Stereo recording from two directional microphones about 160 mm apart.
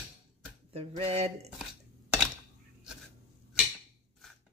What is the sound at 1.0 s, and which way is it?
Speech, 40° right (ahead or behind).